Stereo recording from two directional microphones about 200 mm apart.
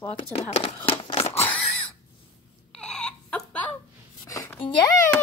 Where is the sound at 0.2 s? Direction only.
30° left (ahead or behind).